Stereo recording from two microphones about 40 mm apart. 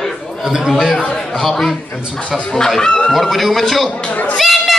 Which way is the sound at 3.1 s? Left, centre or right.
Centre.